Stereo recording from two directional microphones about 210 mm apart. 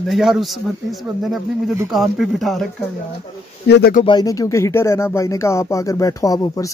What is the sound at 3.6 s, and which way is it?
Speech, 50° left (ahead or behind).